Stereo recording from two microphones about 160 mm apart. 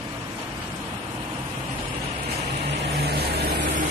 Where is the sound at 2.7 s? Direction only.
90° right.